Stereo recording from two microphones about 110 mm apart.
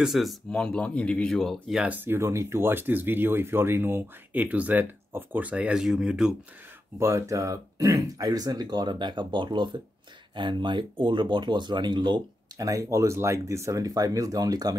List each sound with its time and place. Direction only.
0.0 s speech: centre (ahead or behind)
0.5 s speech: 10° left (ahead or behind)
1.8 s speech: 15° right (ahead or behind)
7.0 s speech: 25° right (ahead or behind)